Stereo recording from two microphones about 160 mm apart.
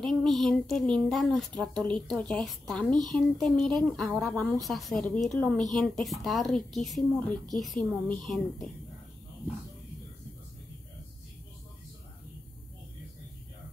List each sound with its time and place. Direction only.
0.0 s a woman's voice: 5° left (ahead or behind)